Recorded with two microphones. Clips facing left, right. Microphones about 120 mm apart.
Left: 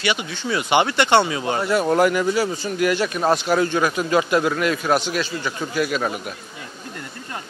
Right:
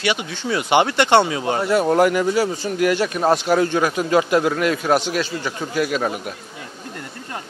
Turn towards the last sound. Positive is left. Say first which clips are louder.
# right 1 dB
turn(degrees=-50)  # may be behind; listen again after turning